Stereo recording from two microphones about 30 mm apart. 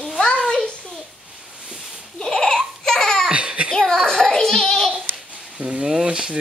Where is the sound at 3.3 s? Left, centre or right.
Right.